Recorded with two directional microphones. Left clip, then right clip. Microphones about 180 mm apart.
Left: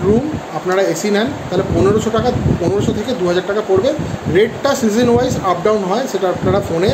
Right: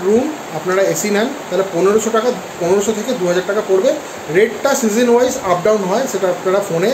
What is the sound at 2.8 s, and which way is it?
Speech, 5° left (ahead or behind).